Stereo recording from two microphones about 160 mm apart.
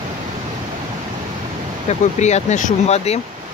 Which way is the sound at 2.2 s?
45° left (ahead or behind).